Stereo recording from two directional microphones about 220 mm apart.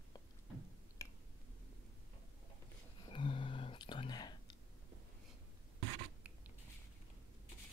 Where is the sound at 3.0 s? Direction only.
25° left (ahead or behind).